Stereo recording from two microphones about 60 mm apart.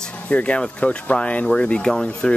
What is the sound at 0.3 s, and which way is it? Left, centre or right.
Speech, centre.